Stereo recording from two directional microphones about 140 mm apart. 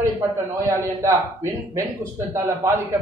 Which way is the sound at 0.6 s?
20° right (ahead or behind).